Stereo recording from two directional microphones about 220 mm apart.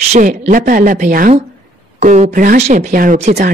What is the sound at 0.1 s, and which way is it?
Speech, 35° right (ahead or behind).